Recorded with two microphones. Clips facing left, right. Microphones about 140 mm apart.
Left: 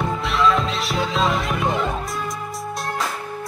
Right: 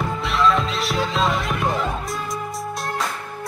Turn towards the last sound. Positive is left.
turn(degrees=0)  # may be behind; listen again after turning